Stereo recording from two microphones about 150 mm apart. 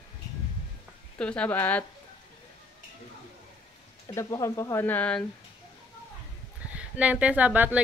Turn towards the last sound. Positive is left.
turn(degrees=-10)  # may be behind; listen again after turning